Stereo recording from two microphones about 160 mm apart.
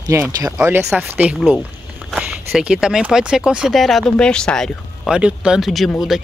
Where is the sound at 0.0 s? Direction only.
20° right (ahead or behind).